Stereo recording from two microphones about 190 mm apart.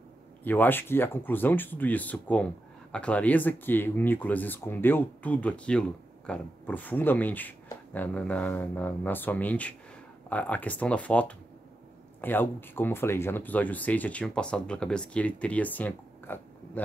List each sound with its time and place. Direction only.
0.4 s speech: 10° left (ahead or behind)